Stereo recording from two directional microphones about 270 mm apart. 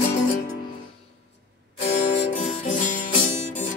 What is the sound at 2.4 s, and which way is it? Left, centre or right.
Music, left.